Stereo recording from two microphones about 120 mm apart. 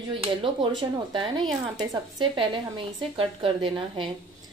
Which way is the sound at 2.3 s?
40° right (ahead or behind).